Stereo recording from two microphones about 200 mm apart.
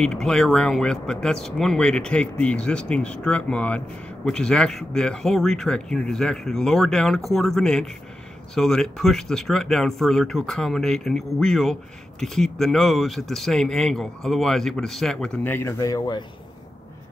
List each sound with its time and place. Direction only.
0.0 s speech: 5° left (ahead or behind); by 16.3 s 20° left (ahead or behind)